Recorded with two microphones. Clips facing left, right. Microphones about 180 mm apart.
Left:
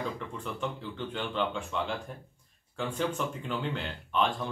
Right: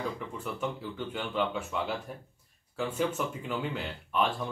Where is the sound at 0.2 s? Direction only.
5° right (ahead or behind).